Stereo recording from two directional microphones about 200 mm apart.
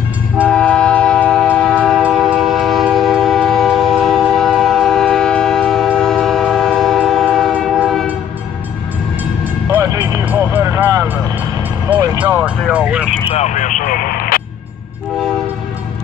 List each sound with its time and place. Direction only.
0.5 s train: 5° left (ahead or behind)
9.7 s music: 10° right (ahead or behind)
11.9 s vehicle: 10° right (ahead or behind)
13.3 s music: 35° left (ahead or behind)